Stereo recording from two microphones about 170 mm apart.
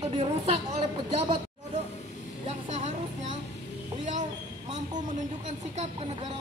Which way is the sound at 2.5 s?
45° right (ahead or behind).